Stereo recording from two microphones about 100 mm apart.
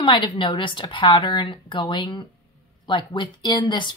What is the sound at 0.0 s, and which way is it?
A woman's voice, 55° left (ahead or behind).